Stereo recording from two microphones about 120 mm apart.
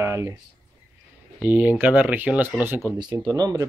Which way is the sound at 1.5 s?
15° right (ahead or behind).